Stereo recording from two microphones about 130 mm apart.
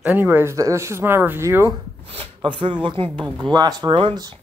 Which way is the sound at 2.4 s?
40° right (ahead or behind).